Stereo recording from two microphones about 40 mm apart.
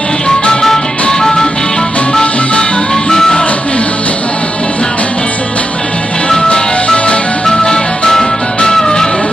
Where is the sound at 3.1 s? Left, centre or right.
Centre.